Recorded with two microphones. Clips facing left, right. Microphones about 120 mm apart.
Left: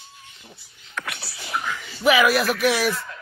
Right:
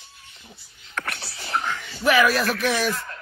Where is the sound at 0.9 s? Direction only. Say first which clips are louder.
Right 1 dB; 40° right (ahead or behind).